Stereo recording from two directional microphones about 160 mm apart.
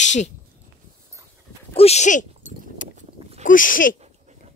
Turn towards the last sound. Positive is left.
turn(degrees=55)  # may be behind; listen again after turning